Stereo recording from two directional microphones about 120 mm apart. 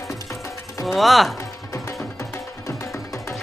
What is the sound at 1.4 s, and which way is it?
Music, 25° left (ahead or behind).